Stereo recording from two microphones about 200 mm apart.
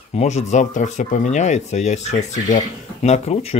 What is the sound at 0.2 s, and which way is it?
Speech, 35° left (ahead or behind).